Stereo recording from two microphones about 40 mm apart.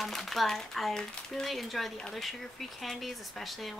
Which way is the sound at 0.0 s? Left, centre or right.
Centre.